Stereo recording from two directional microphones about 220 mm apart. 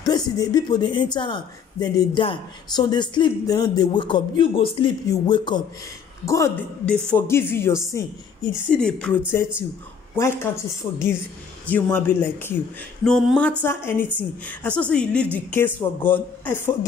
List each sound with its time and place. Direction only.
0.4 s a woman's voice: 20° left (ahead or behind)